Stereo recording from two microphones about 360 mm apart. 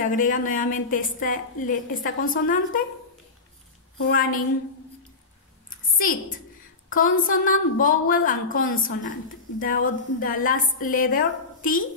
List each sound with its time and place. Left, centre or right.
0.0 s a woman's voice: left
4.0 s a woman's voice: left
5.9 s a woman's voice: left